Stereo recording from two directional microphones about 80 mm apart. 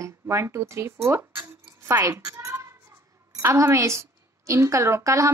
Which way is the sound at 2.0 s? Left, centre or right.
Right.